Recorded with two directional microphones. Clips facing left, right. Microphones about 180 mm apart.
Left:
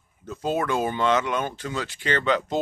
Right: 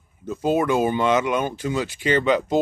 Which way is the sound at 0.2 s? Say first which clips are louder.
Right 5 dB; 10° right (ahead or behind).